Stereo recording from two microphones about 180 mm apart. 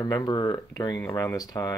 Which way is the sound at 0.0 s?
20° left (ahead or behind).